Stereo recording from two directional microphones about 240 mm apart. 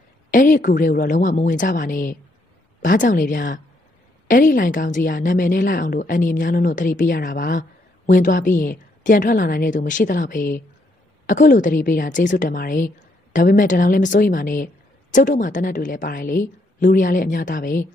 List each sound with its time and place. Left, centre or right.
0.3 s a woman's voice: left